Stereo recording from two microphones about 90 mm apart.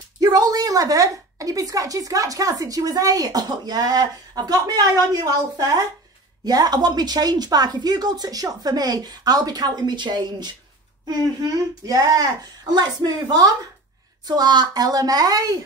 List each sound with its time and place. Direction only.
0.2 s a woman's voice: 45° right (ahead or behind)
11.1 s a woman's voice: 45° right (ahead or behind)